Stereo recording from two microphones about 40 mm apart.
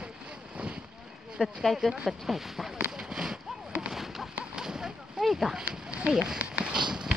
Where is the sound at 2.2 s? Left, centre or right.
Centre.